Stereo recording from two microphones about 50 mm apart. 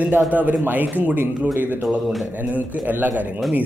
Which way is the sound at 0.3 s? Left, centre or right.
Right.